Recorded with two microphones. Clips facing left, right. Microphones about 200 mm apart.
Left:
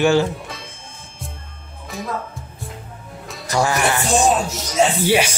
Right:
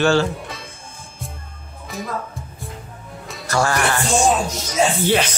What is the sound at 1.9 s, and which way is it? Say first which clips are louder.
Music: even; centre (ahead or behind).